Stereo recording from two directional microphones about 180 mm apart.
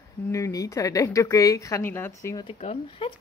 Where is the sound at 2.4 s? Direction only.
30° left (ahead or behind).